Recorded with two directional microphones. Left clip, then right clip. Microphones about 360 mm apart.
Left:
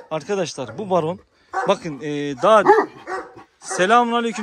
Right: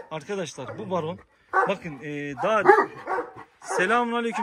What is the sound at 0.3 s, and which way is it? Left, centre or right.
Speech, centre.